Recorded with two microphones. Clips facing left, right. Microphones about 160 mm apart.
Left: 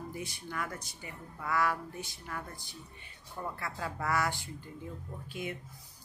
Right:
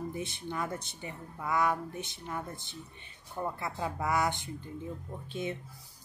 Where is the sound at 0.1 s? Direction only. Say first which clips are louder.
Right 3 dB; 25° right (ahead or behind).